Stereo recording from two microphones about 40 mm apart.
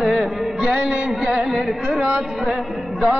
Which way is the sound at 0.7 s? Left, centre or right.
Right.